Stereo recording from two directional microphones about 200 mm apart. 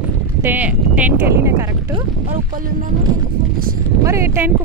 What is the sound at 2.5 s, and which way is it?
Speech, 45° right (ahead or behind).